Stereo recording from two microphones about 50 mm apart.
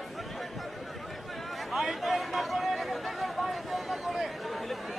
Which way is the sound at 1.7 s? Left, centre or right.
Centre.